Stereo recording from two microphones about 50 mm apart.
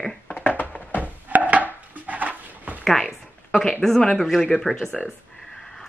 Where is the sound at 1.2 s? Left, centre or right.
Right.